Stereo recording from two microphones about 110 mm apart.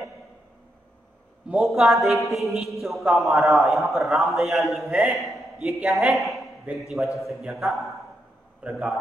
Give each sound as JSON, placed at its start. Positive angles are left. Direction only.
{"t": 1.5, "sound": "a man's voice", "side_deg": 0}